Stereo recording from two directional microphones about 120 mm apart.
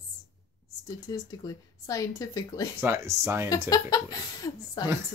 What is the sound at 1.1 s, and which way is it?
Speech, 35° left (ahead or behind).